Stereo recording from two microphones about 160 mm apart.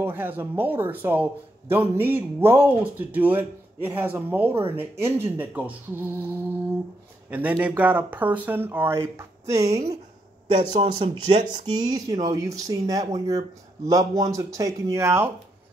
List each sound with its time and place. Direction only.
0.0 s a man's voice: 15° right (ahead or behind)
7.2 s a man's voice: 10° right (ahead or behind)
10.5 s speech: 35° right (ahead or behind); by 15.3 s 15° right (ahead or behind)